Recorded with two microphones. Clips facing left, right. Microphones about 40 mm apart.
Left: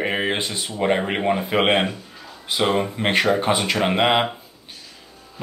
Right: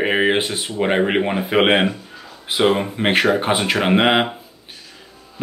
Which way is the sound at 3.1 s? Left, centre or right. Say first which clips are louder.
Right 2 dB; right.